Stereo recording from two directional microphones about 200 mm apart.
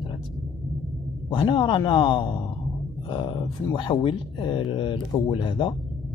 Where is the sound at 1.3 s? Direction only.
25° left (ahead or behind).